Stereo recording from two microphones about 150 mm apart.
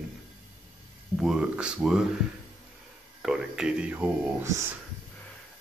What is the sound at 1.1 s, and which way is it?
Speech, 5° right (ahead or behind).